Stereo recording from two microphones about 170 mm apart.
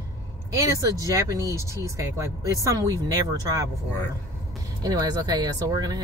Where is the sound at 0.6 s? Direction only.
20° right (ahead or behind).